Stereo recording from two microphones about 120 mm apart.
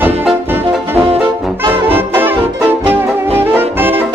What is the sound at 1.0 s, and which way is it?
Brass instrument, 55° right (ahead or behind).